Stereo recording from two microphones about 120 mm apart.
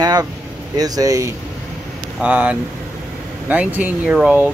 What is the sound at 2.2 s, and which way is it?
Speech, 10° right (ahead or behind).